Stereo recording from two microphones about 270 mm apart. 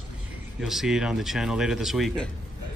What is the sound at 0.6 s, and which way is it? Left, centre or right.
Speech, centre.